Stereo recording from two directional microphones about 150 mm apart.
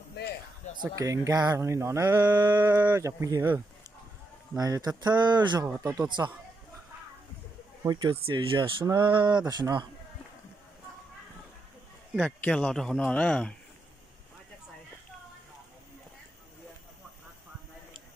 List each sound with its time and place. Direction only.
0.7 s speech: 20° right (ahead or behind)
7.8 s speech: 30° right (ahead or behind)
12.3 s a man's voice: 5° left (ahead or behind)